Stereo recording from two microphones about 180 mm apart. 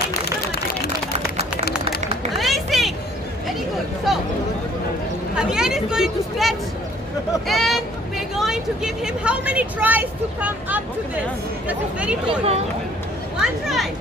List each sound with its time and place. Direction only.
2.3 s a sound: centre (ahead or behind)
5.3 s a woman's voice: 5° right (ahead or behind)
12.3 s speech: 35° right (ahead or behind)
13.4 s speech: centre (ahead or behind)